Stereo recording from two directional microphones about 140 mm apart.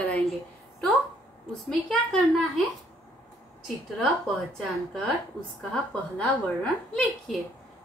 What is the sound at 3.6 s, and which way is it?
A woman's voice, 5° left (ahead or behind).